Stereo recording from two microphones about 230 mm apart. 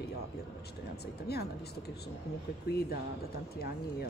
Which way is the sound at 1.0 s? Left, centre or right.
Left.